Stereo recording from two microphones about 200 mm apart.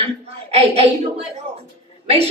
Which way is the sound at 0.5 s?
30° right (ahead or behind).